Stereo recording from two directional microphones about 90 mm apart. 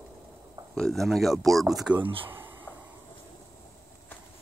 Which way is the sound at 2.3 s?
25° right (ahead or behind).